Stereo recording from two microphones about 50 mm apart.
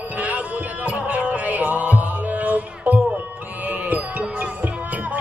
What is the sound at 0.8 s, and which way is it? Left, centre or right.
Music, right.